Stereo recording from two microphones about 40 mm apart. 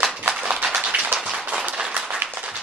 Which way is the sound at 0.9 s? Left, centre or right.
Right.